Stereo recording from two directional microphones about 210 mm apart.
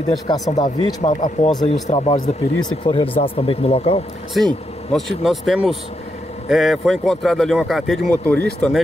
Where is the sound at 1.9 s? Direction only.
25° left (ahead or behind).